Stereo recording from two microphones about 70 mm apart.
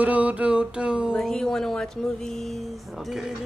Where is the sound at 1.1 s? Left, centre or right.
Centre.